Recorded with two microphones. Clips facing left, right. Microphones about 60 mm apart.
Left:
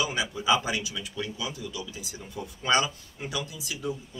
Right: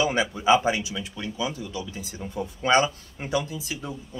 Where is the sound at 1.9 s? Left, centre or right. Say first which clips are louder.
Right 5 dB; right.